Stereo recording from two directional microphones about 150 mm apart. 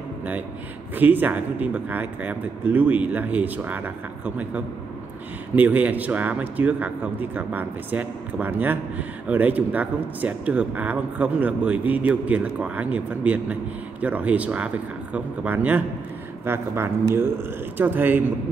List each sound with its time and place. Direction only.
0.9 s a man's voice: 10° right (ahead or behind)